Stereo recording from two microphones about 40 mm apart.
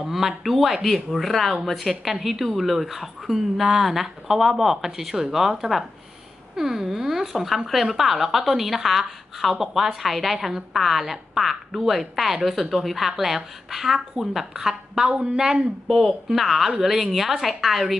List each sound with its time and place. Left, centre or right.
0.0 s speech: centre
15.0 s speech: right
15.3 s speech: centre
16.3 s speech: centre